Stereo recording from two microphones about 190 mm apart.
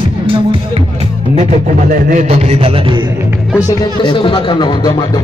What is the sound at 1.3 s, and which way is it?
Speech, 40° right (ahead or behind).